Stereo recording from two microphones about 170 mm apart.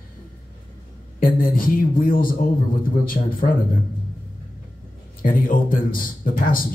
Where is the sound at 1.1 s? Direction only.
55° left (ahead or behind).